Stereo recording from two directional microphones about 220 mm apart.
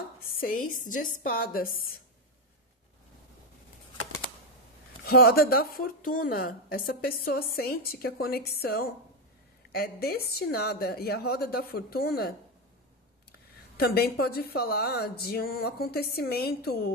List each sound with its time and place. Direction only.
0.2 s a sound: 40° left (ahead or behind)
0.6 s a woman's voice: 75° left (ahead or behind)
1.2 s speech: 40° left (ahead or behind)
5.0 s speech: 45° left (ahead or behind)
13.7 s speech: 45° left (ahead or behind)